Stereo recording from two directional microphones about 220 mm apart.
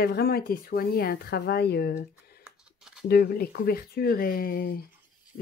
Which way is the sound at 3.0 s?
45° left (ahead or behind).